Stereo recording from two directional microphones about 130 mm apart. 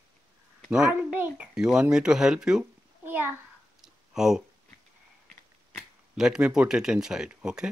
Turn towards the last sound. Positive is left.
turn(degrees=-5)  # may be behind; listen again after turning